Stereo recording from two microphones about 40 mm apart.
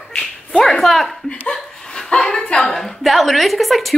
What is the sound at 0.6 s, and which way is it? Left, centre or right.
Speech, centre.